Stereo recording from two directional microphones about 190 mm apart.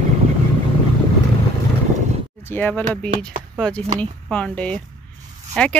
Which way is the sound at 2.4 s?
10° left (ahead or behind).